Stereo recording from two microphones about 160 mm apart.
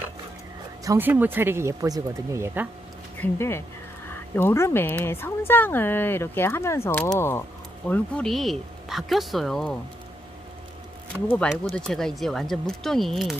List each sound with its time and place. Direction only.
0.8 s speech: 10° right (ahead or behind)
3.2 s speech: 15° left (ahead or behind)
11.7 s speech: 5° left (ahead or behind)